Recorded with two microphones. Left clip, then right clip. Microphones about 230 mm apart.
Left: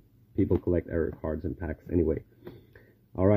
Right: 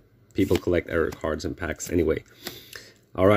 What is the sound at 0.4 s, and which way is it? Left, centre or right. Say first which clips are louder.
Speech: right 4 dB; centre.